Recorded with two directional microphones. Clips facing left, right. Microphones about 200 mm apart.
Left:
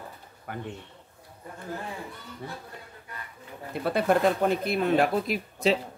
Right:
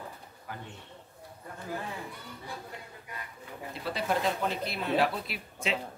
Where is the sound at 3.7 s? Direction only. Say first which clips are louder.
Left 8 dB; 55° left (ahead or behind).